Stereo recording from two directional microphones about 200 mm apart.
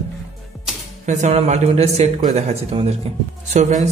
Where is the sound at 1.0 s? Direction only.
35° right (ahead or behind).